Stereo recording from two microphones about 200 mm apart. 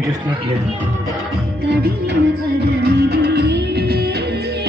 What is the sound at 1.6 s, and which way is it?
Music, 55° right (ahead or behind).